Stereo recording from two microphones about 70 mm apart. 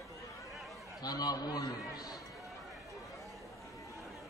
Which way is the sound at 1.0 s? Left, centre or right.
Left.